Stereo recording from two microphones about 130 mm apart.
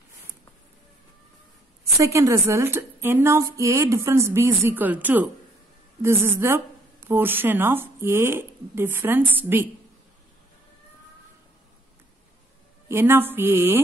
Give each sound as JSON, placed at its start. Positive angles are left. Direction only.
{"t": 2.0, "sound": "a woman's voice", "side_deg": -25}
{"t": 12.8, "sound": "a woman's voice", "side_deg": -20}